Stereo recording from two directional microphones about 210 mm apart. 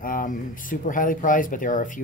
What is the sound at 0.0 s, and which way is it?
Speech, 40° left (ahead or behind).